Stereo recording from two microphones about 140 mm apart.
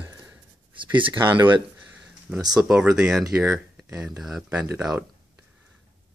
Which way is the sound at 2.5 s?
5° right (ahead or behind).